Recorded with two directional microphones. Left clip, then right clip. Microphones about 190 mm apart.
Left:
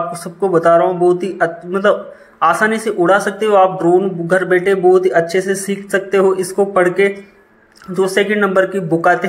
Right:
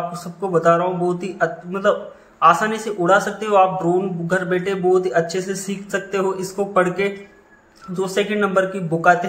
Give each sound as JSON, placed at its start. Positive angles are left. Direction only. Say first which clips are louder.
{"t": 0.2, "sound": "a man's voice", "louder": "left 5 dB", "side_deg": 20}
{"t": 7.9, "sound": "a man's voice", "louder": "left 7 dB", "side_deg": 25}